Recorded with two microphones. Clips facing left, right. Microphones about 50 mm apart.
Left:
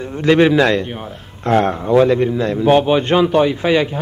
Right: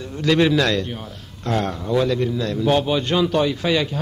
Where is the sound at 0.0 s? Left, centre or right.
Left.